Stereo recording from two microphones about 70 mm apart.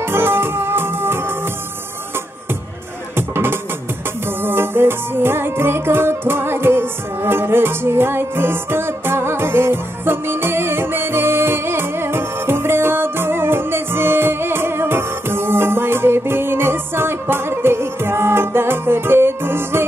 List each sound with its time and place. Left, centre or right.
0.0 s music: right
3.2 s music: right